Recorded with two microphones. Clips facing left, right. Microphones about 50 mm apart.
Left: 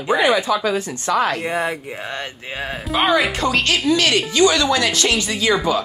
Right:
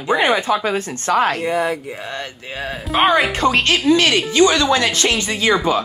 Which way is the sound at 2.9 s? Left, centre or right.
Centre.